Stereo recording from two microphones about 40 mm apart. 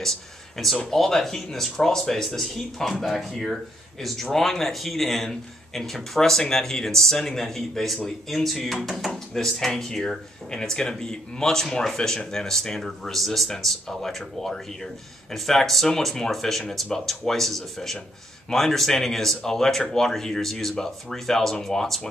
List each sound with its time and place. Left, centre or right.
0.0 s speech: centre